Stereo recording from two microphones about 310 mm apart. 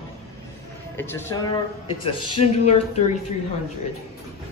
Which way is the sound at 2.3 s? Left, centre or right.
Centre.